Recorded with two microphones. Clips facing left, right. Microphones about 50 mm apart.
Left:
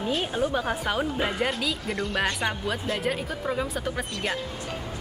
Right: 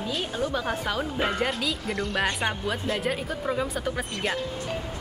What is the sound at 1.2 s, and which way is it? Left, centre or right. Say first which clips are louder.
Speech: even; centre.